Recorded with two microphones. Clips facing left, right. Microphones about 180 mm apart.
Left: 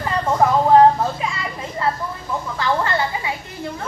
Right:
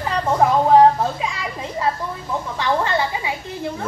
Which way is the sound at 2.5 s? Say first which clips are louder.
Right 1 dB; 20° right (ahead or behind).